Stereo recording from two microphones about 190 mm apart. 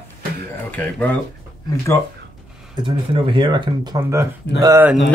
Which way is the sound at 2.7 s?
25° right (ahead or behind).